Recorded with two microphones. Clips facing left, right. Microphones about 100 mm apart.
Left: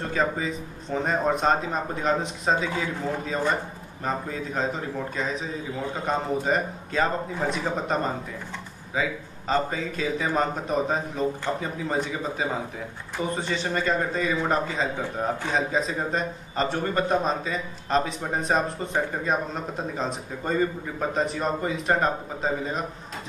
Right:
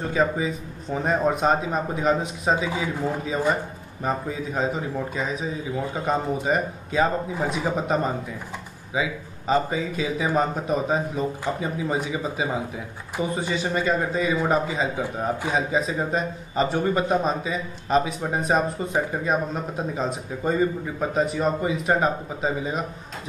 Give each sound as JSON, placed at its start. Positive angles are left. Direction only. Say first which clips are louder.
{"t": 0.1, "sound": "a man's voice", "louder": "right 3 dB", "side_deg": -5}